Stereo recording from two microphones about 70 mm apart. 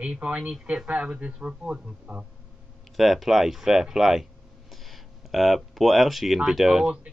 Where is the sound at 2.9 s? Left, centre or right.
Centre.